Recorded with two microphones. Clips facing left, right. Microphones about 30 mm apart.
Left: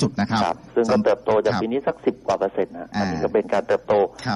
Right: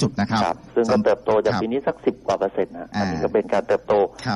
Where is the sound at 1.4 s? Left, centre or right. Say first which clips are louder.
Even; centre.